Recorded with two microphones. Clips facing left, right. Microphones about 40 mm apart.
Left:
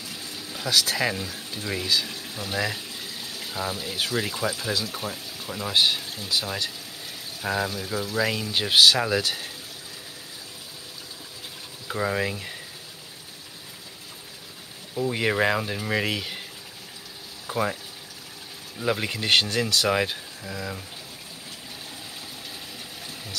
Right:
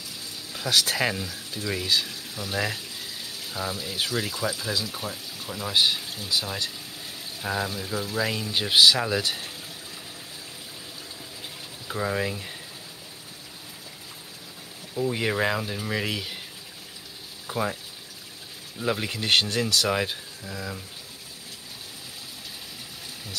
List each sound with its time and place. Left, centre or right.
0.7 s speech: right
1.2 s speech: left
2.0 s speech: centre
2.5 s speech: centre
3.5 s speech: centre
11.9 s speech: centre
15.0 s speech: centre
17.5 s speech: centre
18.8 s speech: centre
19.2 s speech: left
19.9 s speech: centre